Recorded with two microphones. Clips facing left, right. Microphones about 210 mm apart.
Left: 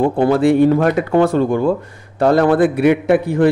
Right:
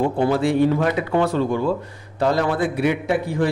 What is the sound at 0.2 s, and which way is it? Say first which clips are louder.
A man's voice: left 6 dB; 55° left (ahead or behind).